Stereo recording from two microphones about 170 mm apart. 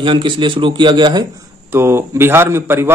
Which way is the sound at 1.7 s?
15° right (ahead or behind).